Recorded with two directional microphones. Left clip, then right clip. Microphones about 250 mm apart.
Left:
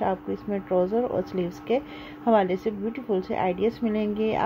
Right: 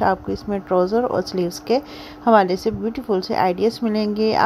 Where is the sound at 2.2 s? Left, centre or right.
Centre.